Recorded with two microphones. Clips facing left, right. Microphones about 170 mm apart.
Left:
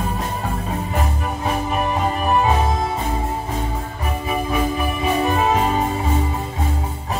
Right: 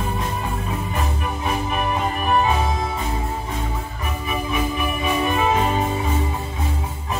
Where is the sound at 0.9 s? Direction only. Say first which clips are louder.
Left 2 dB; 35° left (ahead or behind).